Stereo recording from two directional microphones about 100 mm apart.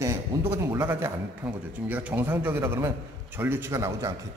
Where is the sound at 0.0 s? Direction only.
30° right (ahead or behind).